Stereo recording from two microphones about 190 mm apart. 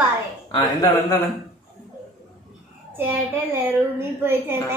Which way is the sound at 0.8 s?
15° left (ahead or behind).